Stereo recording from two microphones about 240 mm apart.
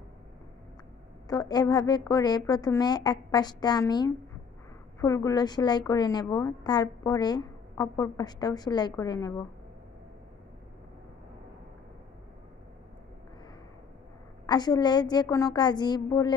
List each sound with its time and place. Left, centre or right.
1.2 s a woman's voice: centre
14.4 s a woman's voice: centre